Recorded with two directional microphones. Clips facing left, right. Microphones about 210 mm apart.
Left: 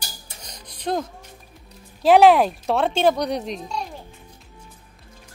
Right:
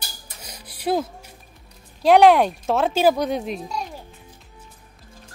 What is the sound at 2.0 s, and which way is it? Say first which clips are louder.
A child's voice: even; centre (ahead or behind).